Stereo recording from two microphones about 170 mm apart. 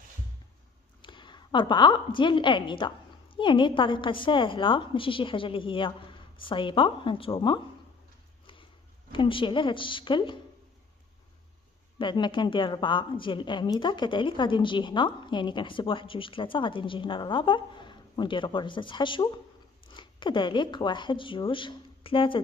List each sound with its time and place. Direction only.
1.0 s a woman's voice: 25° left (ahead or behind)
9.1 s a woman's voice: 30° left (ahead or behind)
12.0 s a woman's voice: 30° left (ahead or behind)